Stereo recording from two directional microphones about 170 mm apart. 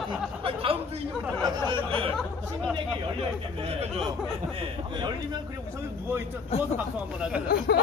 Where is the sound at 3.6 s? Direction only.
35° right (ahead or behind).